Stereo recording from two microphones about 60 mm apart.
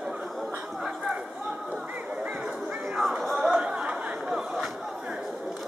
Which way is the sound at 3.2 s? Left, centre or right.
Centre.